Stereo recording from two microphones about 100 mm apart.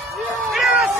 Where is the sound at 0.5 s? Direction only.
Centre (ahead or behind).